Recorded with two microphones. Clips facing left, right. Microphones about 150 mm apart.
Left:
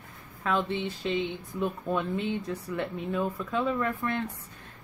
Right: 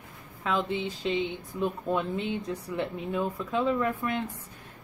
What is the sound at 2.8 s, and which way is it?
Speech, 20° right (ahead or behind).